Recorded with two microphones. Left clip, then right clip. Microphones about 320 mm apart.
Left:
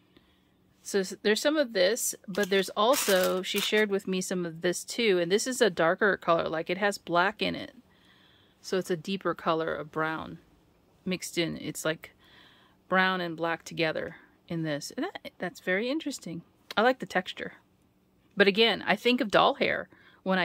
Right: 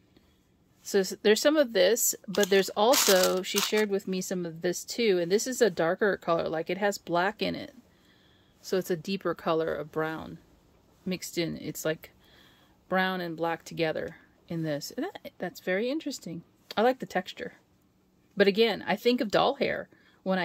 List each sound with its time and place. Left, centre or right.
0.8 s speech: centre